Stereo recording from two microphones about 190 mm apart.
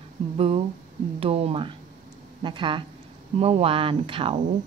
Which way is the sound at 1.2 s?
30° right (ahead or behind).